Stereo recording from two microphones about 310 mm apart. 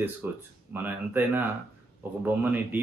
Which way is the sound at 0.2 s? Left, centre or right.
Centre.